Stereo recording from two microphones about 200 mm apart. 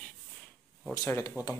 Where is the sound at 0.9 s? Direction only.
15° left (ahead or behind).